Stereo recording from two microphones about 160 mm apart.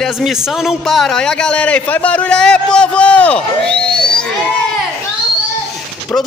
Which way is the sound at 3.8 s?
5° left (ahead or behind).